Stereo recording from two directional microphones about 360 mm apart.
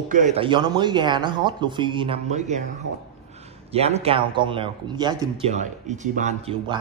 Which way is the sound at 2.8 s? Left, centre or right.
Right.